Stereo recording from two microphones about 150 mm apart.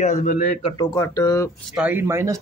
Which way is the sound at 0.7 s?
25° left (ahead or behind).